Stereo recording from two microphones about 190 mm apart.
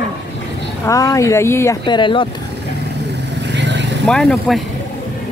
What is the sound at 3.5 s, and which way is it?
Vehicle, 65° right (ahead or behind).